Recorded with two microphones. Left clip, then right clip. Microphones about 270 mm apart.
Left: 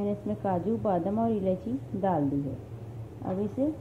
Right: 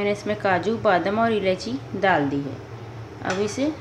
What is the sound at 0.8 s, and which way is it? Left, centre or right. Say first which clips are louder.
Speech: right 10 dB; right.